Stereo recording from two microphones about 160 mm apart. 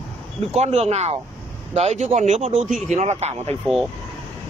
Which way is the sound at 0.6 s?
40° right (ahead or behind).